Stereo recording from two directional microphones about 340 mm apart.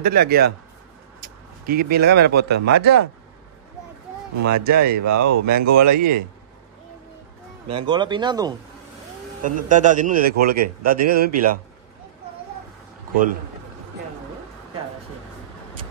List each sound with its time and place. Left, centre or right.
0.0 s a man's voice: right
2.7 s speech: right
4.4 s speech: right
7.7 s a man's voice: centre